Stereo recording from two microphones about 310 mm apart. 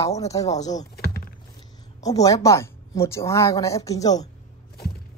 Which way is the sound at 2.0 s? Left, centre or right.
Centre.